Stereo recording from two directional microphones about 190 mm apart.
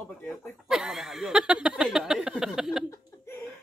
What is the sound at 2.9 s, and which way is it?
Chuckle, 15° left (ahead or behind).